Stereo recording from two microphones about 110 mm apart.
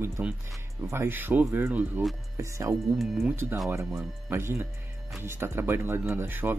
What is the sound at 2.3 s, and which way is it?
Speech, 25° right (ahead or behind).